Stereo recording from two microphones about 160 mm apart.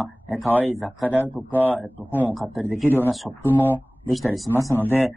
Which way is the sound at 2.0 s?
10° right (ahead or behind).